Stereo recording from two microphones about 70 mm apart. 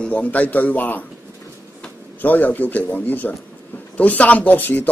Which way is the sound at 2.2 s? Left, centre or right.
Left.